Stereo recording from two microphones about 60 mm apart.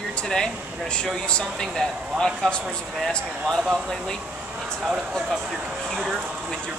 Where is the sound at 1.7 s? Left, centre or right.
Centre.